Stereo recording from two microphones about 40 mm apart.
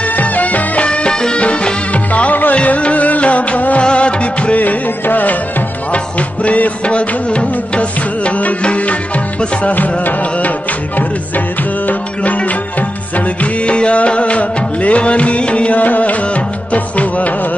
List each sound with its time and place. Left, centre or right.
0.0 s music: left
0.8 s music: left
4.6 s music: left
5.9 s music: left
11.0 s music: left
15.8 s music: left